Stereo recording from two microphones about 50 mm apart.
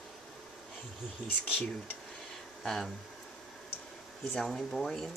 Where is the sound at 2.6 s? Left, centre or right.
Centre.